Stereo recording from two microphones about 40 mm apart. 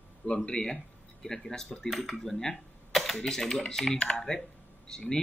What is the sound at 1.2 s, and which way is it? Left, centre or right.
Speech, centre.